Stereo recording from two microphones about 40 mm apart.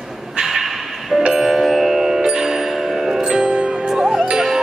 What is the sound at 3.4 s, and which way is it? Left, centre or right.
Music, right.